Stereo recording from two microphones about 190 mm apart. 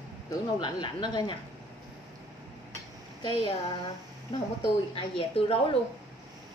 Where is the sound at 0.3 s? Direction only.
20° left (ahead or behind).